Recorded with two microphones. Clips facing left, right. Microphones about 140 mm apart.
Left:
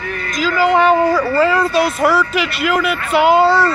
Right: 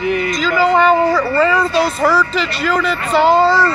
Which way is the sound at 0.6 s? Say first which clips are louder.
Even; 10° left (ahead or behind).